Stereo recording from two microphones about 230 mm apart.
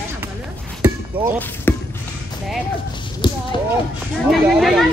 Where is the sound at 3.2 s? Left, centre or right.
Centre.